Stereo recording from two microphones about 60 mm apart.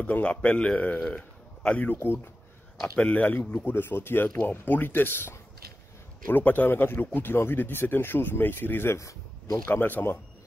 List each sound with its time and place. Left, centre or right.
0.0 s a man's voice: left
3.0 s speech: left